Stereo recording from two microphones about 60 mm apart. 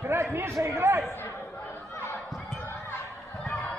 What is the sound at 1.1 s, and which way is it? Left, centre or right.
Chatter, left.